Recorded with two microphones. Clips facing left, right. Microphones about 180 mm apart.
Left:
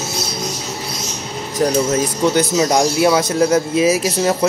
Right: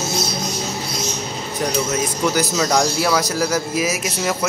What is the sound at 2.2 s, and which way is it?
A man's voice, 25° left (ahead or behind).